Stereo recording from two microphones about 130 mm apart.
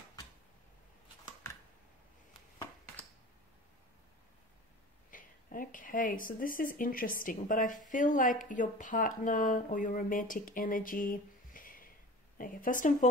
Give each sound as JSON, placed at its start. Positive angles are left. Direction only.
{"t": 5.1, "sound": "speech", "side_deg": 90}
{"t": 7.9, "sound": "a woman's voice", "side_deg": 75}